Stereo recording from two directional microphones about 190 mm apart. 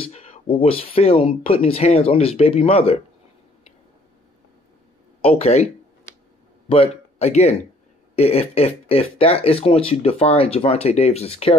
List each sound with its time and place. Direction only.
0.0 s speech: 30° left (ahead or behind)
5.2 s speech: 30° left (ahead or behind)
6.7 s speech: 30° left (ahead or behind)